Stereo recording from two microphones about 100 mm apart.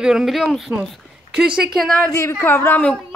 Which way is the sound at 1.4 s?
10° right (ahead or behind).